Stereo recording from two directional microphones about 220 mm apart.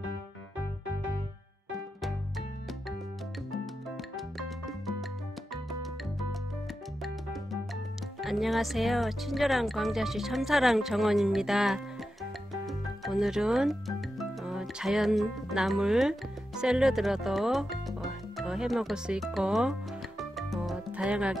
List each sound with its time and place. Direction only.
4.4 s music: centre (ahead or behind)
8.2 s speech: centre (ahead or behind)
12.6 s music: centre (ahead or behind)